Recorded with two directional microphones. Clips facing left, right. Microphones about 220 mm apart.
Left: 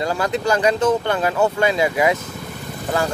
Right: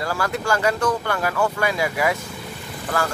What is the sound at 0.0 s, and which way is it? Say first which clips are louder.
Speech: left 4 dB; 20° left (ahead or behind).